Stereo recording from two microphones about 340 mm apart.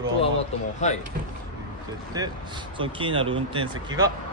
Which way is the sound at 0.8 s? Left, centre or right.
Left.